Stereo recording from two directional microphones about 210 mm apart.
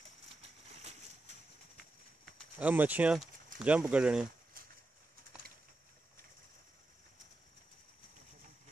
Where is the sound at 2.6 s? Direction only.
10° right (ahead or behind).